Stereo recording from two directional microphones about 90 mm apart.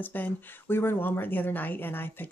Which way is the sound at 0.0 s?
20° left (ahead or behind).